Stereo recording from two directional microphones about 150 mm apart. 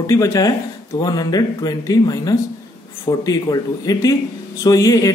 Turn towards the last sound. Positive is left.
turn(degrees=25)  # may be behind; listen again after turning